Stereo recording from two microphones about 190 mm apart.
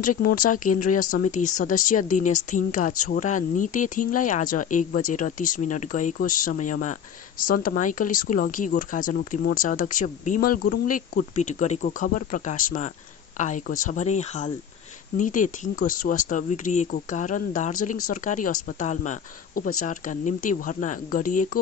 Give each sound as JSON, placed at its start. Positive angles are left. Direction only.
{"t": 0.0, "sound": "speech", "side_deg": 50}